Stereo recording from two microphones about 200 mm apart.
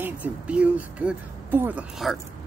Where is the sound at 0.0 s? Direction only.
5° right (ahead or behind).